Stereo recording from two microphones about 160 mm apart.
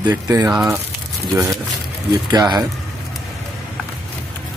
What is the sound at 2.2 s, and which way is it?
Speech, 25° right (ahead or behind).